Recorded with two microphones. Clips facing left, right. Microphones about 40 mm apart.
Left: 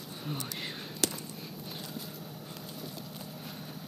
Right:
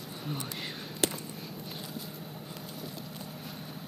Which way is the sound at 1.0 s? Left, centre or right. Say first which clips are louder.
Right 2 dB; right.